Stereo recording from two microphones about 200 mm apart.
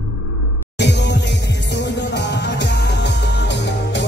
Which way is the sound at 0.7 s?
60° left (ahead or behind).